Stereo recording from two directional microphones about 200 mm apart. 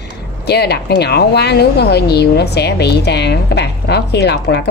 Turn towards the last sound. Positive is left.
turn(degrees=60)  # may be behind; listen again after turning